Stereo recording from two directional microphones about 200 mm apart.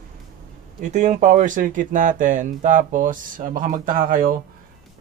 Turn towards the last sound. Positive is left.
turn(degrees=-45)  # may be behind; listen again after turning